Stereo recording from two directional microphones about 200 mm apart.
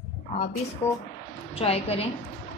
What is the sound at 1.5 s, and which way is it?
Speech, 30° left (ahead or behind).